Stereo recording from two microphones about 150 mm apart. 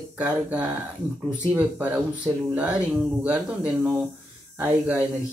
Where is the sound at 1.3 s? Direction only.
10° right (ahead or behind).